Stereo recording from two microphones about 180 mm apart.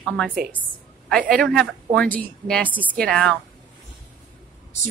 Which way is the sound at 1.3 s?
5° left (ahead or behind).